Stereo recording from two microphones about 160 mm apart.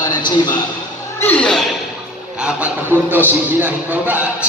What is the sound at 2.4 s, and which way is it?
A man's voice, 10° right (ahead or behind).